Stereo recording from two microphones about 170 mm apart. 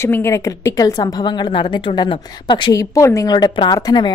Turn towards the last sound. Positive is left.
turn(degrees=25)  # may be behind; listen again after turning